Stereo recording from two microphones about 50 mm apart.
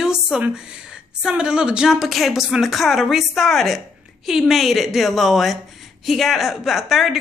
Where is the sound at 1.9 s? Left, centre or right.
Centre.